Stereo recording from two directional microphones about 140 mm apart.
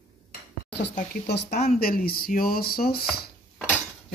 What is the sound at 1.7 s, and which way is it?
Speech, 90° left.